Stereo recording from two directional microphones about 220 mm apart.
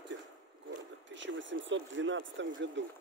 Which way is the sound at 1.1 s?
55° right (ahead or behind).